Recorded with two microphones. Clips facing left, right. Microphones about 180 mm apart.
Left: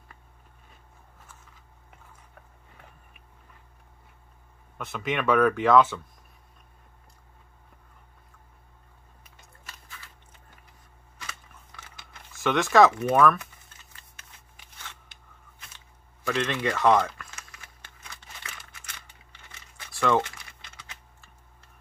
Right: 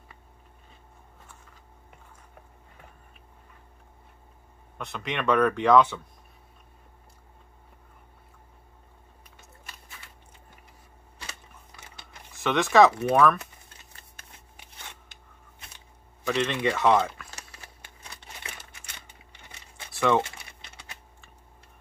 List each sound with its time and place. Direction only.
4.7 s speech: 5° left (ahead or behind)
12.4 s speech: centre (ahead or behind)
16.3 s speech: 5° right (ahead or behind)
17.3 s a sound: 35° right (ahead or behind)
19.8 s a sound: 20° right (ahead or behind)
20.2 s typing: 25° right (ahead or behind)